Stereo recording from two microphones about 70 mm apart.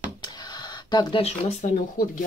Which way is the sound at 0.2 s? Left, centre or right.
Left.